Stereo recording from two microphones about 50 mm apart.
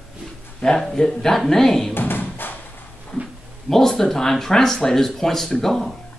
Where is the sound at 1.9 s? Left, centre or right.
Left.